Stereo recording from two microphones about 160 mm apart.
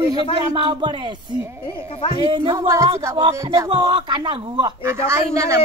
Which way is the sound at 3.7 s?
30° right (ahead or behind).